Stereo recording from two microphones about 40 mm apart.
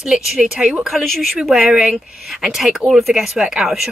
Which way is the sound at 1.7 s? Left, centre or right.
Right.